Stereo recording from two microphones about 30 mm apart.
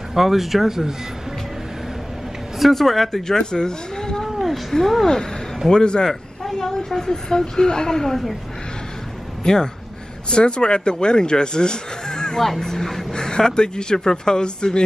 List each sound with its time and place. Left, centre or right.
0.1 s speech: centre
2.6 s speech: centre
3.3 s speech: left
4.2 s a sound: centre
5.0 s speech: left
6.0 s a sound: centre
6.9 s speech: centre
7.2 s speech: left
9.4 s speech: left
12.4 s speech: centre
13.1 s a sound: left
13.5 s speech: left